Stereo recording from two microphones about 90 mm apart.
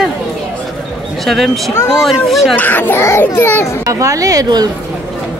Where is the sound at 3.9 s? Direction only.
35° right (ahead or behind).